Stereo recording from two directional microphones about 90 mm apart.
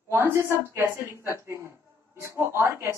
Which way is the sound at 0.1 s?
30° right (ahead or behind).